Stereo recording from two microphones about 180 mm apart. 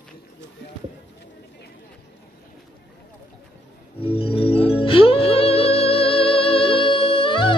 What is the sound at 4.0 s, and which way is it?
Music, 30° left (ahead or behind).